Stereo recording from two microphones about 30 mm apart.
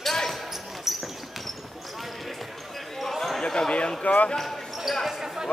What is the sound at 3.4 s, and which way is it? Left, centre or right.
Speech, left.